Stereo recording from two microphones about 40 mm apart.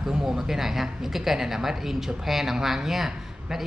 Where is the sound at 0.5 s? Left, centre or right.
Centre.